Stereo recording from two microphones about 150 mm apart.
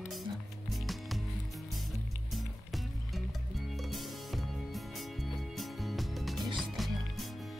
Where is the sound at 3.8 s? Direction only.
Centre (ahead or behind).